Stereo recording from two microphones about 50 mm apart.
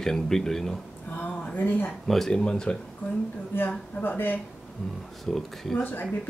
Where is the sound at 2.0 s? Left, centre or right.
Centre.